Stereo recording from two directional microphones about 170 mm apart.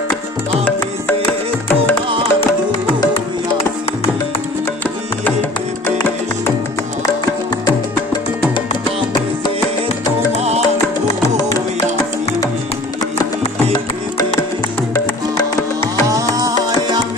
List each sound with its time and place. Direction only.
5.9 s music: 15° left (ahead or behind)
15.3 s music: 20° left (ahead or behind)
16.1 s music: 20° right (ahead or behind)